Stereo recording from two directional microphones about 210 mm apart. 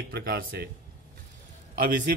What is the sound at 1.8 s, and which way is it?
Speech, 40° right (ahead or behind).